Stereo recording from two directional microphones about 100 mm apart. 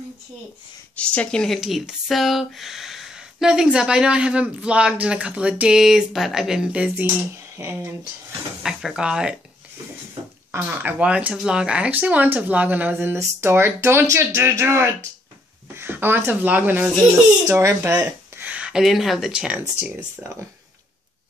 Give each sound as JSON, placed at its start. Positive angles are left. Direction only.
{"t": 0.9, "sound": "speech", "side_deg": 15}
{"t": 7.6, "sound": "speech", "side_deg": -30}
{"t": 8.6, "sound": "speech", "side_deg": -5}
{"t": 10.5, "sound": "speech", "side_deg": -20}